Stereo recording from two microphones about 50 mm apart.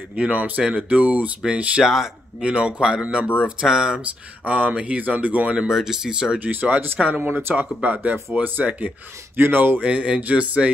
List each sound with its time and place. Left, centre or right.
0.1 s speech: right
1.8 s speech: centre
2.4 s speech: right
4.0 s speech: right
5.6 s speech: centre
6.4 s speech: right
7.2 s speech: right
9.4 s speech: right
9.8 s speech: right